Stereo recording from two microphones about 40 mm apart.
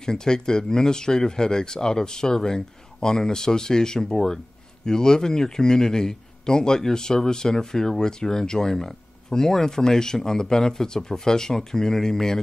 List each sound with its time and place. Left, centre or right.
0.0 s a man's voice: centre